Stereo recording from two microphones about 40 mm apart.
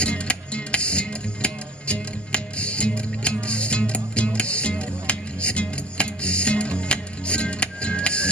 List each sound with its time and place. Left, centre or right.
0.0 s music: left